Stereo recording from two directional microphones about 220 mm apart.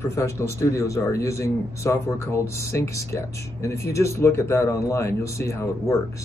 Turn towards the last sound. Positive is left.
turn(degrees=15)  # may be behind; listen again after turning